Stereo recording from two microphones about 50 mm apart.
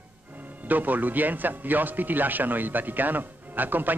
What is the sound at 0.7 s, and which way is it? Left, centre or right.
A man's voice, right.